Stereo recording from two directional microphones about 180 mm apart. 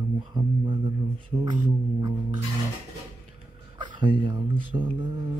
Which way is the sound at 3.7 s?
25° right (ahead or behind).